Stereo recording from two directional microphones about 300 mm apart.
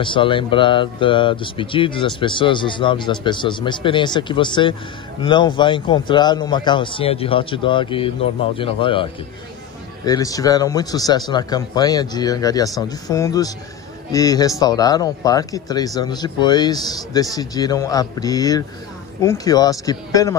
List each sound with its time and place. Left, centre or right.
0.0 s speech: centre